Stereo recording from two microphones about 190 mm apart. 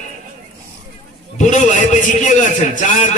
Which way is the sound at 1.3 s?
40° left (ahead or behind).